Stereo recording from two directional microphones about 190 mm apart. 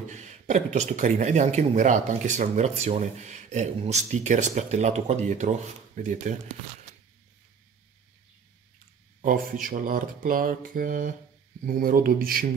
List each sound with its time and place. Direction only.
0.1 s speech: 40° right (ahead or behind)
9.2 s speech: 45° right (ahead or behind)